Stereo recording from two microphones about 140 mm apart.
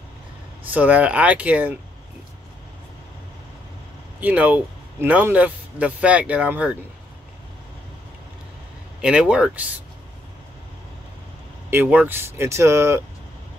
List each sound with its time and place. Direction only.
0.7 s speech: 10° right (ahead or behind)
4.2 s speech: 10° right (ahead or behind)
9.0 s speech: 5° right (ahead or behind)
11.7 s speech: 10° right (ahead or behind)